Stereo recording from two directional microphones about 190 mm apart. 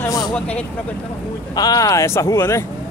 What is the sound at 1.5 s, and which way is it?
Speech, 20° left (ahead or behind).